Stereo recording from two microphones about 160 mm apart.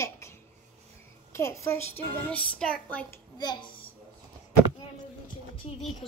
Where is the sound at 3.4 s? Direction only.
30° left (ahead or behind).